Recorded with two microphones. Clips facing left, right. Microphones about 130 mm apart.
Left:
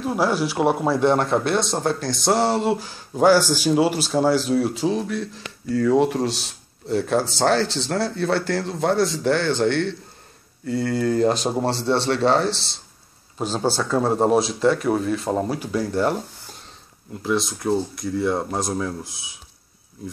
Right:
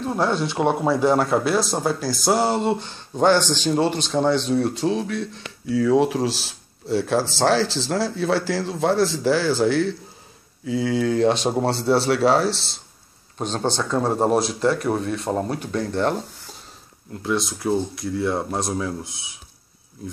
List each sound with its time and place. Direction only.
0.0 s speech: 5° left (ahead or behind)